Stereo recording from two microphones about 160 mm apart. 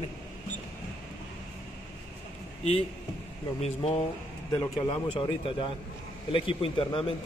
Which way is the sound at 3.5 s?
40° left (ahead or behind).